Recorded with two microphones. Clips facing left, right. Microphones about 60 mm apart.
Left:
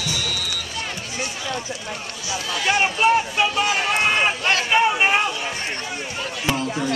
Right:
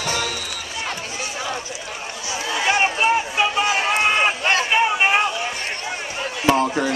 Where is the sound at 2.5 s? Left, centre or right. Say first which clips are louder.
Right 2 dB; right.